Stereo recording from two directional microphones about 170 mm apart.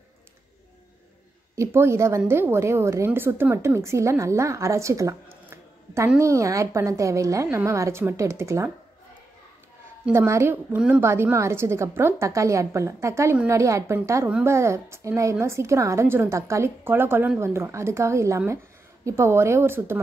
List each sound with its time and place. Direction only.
1.5 s a woman's voice: 15° right (ahead or behind)
10.0 s a woman's voice: 15° right (ahead or behind)